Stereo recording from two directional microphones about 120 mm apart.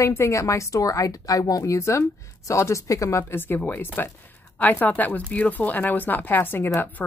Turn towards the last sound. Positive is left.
turn(degrees=20)  # may be behind; listen again after turning